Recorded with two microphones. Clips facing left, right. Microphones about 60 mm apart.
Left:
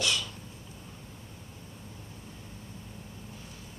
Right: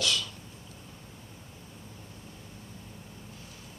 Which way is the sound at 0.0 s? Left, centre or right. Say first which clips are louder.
Even; centre.